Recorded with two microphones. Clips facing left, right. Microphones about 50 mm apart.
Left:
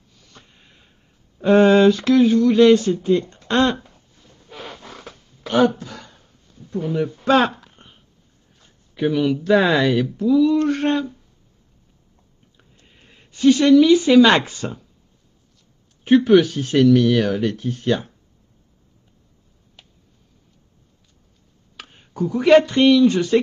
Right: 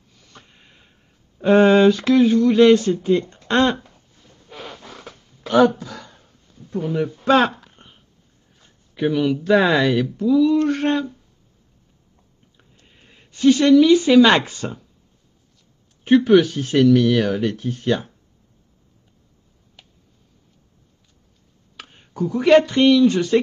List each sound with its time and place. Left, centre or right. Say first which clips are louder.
1.4 s speech: even; centre
6.8 s speech: even; centre
8.5 s speech: even; centre
12.5 s speech: even; centre
16.0 s speech: even; centre
21.7 s speech: even; centre